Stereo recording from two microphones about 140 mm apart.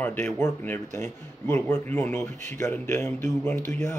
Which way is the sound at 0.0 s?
15° left (ahead or behind).